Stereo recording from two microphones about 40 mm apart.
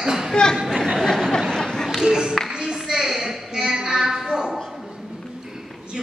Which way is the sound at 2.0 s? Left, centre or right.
Centre.